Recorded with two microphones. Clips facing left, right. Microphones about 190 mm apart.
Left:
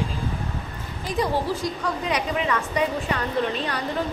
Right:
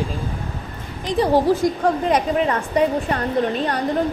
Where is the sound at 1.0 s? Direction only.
30° right (ahead or behind).